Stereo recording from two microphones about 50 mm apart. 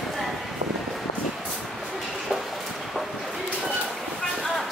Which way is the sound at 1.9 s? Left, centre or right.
Centre.